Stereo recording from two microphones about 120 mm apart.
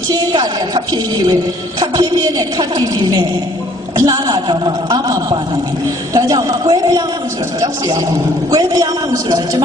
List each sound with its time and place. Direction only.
0.1 s a woman's voice: 35° right (ahead or behind)
3.9 s a woman's voice: 30° right (ahead or behind)
8.5 s a woman's voice: 35° right (ahead or behind)